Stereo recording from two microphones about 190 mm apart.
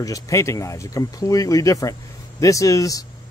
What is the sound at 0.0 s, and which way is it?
Speech, 15° left (ahead or behind).